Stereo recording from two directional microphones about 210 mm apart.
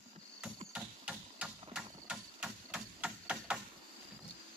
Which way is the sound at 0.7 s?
5° right (ahead or behind).